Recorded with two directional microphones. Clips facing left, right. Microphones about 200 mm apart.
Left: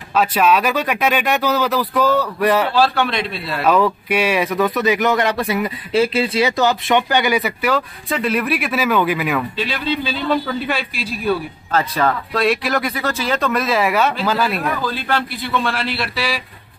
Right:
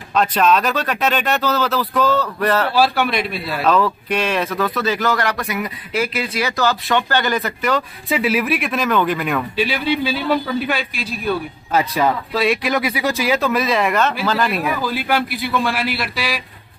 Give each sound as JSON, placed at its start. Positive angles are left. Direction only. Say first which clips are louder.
{"t": 0.1, "sound": "speech", "louder": "even", "side_deg": 5}
{"t": 2.7, "sound": "speech", "louder": "even", "side_deg": -5}
{"t": 3.7, "sound": "speech", "louder": "left 2 dB", "side_deg": 10}
{"t": 8.1, "sound": "speech", "louder": "right 1 dB", "side_deg": -5}
{"t": 9.6, "sound": "a man's voice", "louder": "right 3 dB", "side_deg": -10}
{"t": 11.7, "sound": "speech", "louder": "right 1 dB", "side_deg": -10}